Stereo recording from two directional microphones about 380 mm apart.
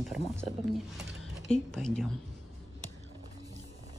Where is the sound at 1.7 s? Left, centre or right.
Centre.